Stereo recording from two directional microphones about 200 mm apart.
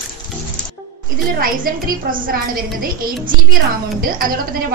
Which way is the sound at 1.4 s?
45° right (ahead or behind).